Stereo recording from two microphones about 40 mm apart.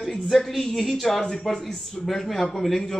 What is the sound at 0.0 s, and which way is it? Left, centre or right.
Speech, centre.